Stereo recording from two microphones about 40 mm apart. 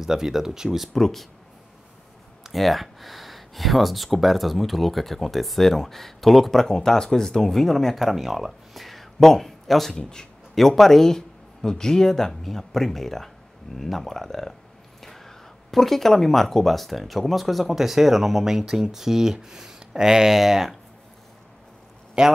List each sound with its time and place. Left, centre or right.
0.0 s speech: centre
0.9 s speech: centre
2.5 s speech: centre
9.9 s speech: centre
10.5 s speech: centre
22.2 s speech: centre